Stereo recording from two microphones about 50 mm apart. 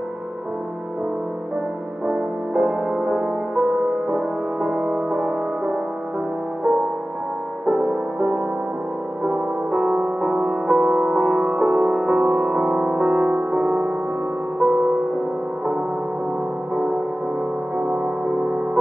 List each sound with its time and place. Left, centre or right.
2.0 s music: centre
7.6 s music: centre
17.7 s music: centre